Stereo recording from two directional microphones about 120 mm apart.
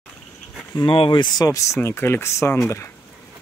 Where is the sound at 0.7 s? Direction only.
45° left (ahead or behind); by 2.6 s 25° left (ahead or behind).